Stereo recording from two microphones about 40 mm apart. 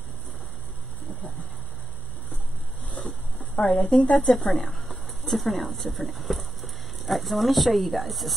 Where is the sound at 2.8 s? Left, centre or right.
Left.